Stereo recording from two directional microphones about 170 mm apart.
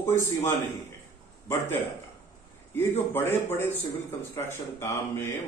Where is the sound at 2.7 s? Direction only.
15° left (ahead or behind).